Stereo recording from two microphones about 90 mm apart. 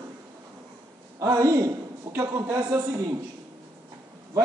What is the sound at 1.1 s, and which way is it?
Speech, 40° right (ahead or behind).